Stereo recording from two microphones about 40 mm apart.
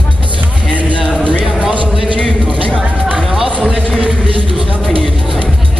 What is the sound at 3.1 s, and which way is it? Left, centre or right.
Music, centre.